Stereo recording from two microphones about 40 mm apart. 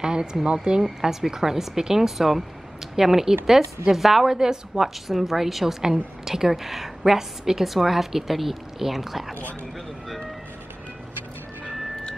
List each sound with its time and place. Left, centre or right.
0.0 s a woman's voice: centre
9.3 s speech: left